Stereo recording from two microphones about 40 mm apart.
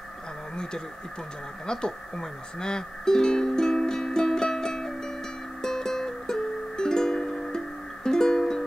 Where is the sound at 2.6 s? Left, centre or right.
Centre.